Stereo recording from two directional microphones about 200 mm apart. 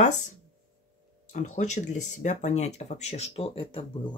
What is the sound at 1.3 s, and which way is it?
Speech, 35° left (ahead or behind).